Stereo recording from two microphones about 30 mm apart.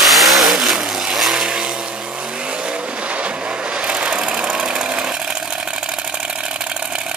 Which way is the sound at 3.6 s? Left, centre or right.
Right.